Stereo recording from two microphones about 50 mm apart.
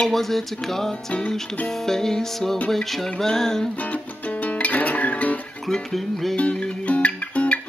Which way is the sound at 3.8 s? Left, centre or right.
Left.